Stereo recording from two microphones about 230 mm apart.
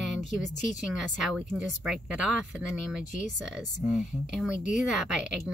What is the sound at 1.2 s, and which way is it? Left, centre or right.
Speech, centre.